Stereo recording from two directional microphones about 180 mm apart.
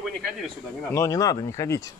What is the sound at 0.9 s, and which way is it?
Speech, 20° left (ahead or behind).